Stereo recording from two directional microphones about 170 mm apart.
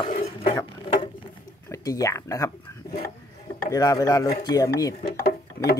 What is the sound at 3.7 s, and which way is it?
Speech, 20° left (ahead or behind).